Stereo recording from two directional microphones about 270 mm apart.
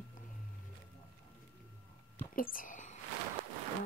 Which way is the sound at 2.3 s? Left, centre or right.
Left.